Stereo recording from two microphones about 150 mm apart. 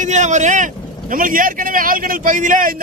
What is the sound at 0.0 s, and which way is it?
Speech, 55° right (ahead or behind).